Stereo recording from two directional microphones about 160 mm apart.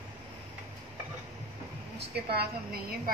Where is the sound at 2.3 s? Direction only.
80° right.